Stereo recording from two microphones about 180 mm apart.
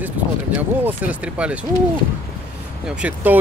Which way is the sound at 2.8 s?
5° right (ahead or behind).